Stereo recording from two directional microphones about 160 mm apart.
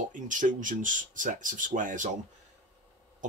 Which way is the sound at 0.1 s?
55° right (ahead or behind).